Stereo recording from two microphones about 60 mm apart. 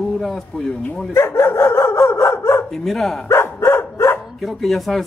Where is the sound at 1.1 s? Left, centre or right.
Left.